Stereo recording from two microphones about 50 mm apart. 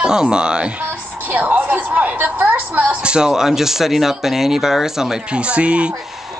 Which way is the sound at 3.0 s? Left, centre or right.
Centre.